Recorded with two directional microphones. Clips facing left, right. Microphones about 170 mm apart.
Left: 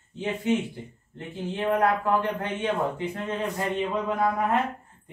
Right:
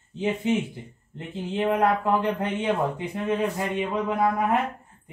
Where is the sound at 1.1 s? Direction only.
20° right (ahead or behind).